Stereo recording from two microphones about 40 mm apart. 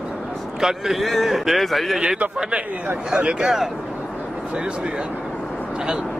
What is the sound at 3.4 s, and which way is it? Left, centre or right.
Speech, centre.